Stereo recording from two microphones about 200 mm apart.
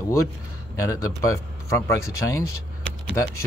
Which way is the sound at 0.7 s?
15° left (ahead or behind).